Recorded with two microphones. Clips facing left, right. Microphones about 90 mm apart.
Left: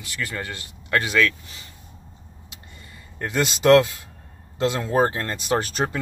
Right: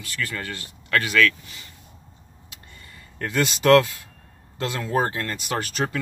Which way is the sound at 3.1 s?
20° left (ahead or behind).